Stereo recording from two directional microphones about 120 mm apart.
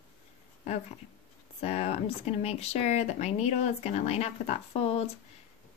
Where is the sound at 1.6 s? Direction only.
60° left (ahead or behind).